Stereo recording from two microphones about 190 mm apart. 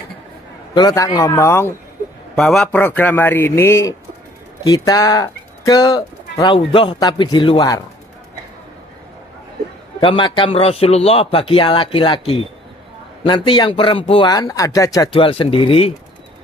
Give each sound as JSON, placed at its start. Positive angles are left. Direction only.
{"t": 0.7, "sound": "a man's voice", "side_deg": 20}
{"t": 2.3, "sound": "a man's voice", "side_deg": 0}
{"t": 9.9, "sound": "speech", "side_deg": 25}
{"t": 15.1, "sound": "speech", "side_deg": 30}